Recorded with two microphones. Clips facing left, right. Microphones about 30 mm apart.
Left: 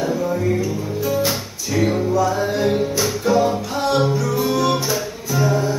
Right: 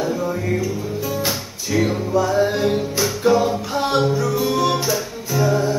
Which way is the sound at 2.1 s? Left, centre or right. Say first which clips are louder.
Right 1 dB; centre.